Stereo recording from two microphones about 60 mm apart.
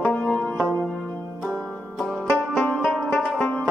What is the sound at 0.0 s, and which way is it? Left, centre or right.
Music, left.